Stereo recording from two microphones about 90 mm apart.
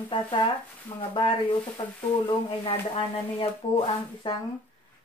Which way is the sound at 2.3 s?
90° left.